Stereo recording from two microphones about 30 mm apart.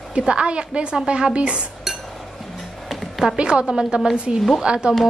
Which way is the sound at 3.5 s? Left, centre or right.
Right.